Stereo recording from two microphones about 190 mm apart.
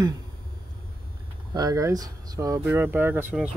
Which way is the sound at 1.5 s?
20° right (ahead or behind).